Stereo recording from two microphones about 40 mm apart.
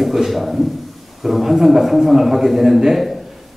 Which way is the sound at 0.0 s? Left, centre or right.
Centre.